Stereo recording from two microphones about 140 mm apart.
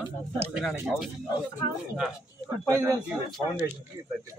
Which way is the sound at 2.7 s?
20° right (ahead or behind).